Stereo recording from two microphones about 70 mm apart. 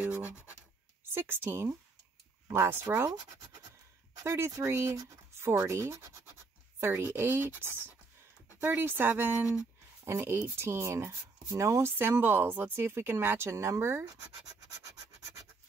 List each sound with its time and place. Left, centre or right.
1.1 s speech: right
4.2 s speech: right
12.0 s speech: right